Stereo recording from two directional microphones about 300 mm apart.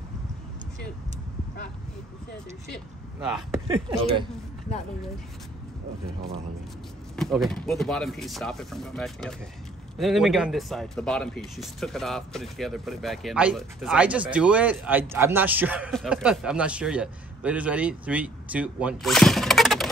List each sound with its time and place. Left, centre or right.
3.2 s speech: centre
3.6 s speech: centre
7.2 s speech: centre